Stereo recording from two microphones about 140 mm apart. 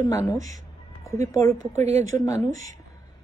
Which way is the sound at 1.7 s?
55° right (ahead or behind).